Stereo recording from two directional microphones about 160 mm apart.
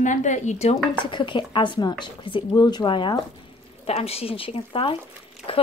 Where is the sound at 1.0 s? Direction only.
30° left (ahead or behind).